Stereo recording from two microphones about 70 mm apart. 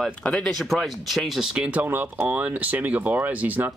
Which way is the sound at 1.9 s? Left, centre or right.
Right.